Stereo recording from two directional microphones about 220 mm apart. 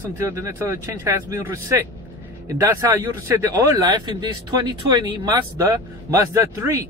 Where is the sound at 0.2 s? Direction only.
15° right (ahead or behind).